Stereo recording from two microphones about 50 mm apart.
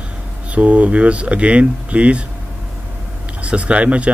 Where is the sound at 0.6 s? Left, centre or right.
Right.